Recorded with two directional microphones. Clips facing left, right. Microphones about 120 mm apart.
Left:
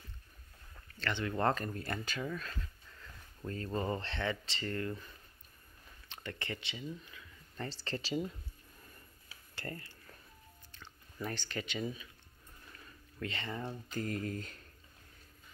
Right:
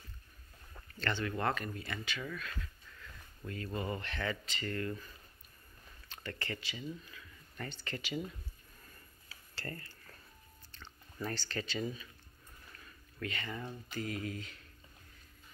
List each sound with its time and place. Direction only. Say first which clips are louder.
1.1 s speech: left 1 dB; 20° left (ahead or behind)
1.4 s speech: left 3 dB; 35° left (ahead or behind)
2.1 s speech: left 3 dB; 30° left (ahead or behind)
8.8 s a sound: right 1 dB; 20° left (ahead or behind)
10.7 s speech: right 2 dB; 10° left (ahead or behind)
13.2 s speech: left 1 dB; 25° left (ahead or behind)
13.8 s speech: left 1 dB; 45° left (ahead or behind)